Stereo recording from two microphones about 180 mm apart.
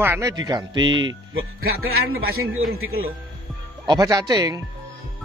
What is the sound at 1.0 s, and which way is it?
A man's voice, 75° right (ahead or behind).